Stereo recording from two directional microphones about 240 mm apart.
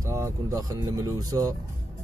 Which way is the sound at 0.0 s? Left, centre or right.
Centre.